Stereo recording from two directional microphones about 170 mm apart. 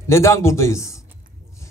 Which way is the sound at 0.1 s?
15° left (ahead or behind).